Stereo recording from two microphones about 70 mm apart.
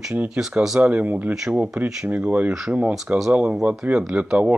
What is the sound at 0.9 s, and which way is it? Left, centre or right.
Speech, right.